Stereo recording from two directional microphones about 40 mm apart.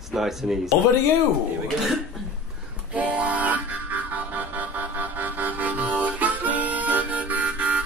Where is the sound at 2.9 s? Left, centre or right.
Right.